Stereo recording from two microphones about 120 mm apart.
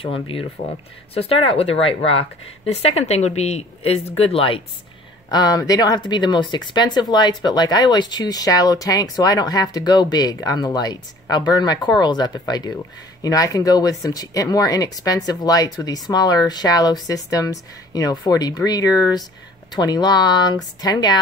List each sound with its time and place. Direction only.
0.0 s speech: 50° left (ahead or behind)
5.3 s speech: 35° left (ahead or behind)